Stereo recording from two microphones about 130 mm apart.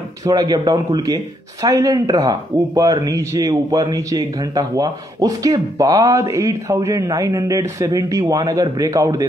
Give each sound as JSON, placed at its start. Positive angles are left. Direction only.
{"t": 0.2, "sound": "speech", "side_deg": -30}